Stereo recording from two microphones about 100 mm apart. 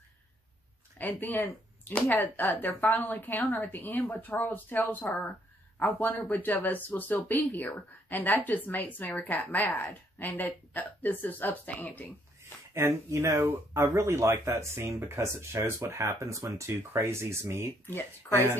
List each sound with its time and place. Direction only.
0.9 s speech: 20° left (ahead or behind)
12.7 s speech: 30° right (ahead or behind)
17.8 s speech: 20° left (ahead or behind)